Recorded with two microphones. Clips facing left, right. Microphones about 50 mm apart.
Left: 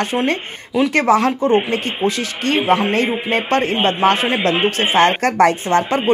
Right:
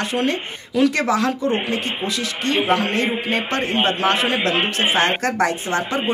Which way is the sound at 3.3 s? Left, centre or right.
Left.